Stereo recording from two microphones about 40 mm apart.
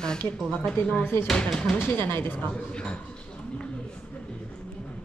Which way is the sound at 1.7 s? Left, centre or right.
Left.